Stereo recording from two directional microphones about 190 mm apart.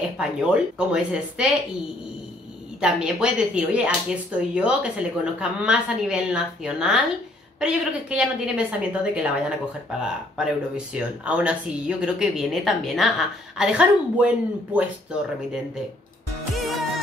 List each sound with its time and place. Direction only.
0.2 s speech: 5° right (ahead or behind)
2.8 s speech: 5° right (ahead or behind)
16.5 s music: centre (ahead or behind)